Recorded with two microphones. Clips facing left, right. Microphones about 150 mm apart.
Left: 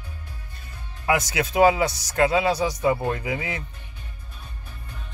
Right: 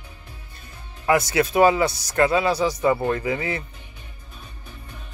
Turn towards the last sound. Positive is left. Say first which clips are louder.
# right 3 dB
turn(degrees=10)  # may be behind; listen again after turning